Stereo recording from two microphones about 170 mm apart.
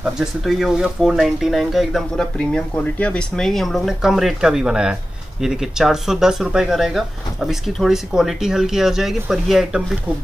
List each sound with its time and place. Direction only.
0.0 s speech: 5° right (ahead or behind)